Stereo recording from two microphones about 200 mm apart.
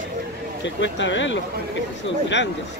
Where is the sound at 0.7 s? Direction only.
65° left (ahead or behind).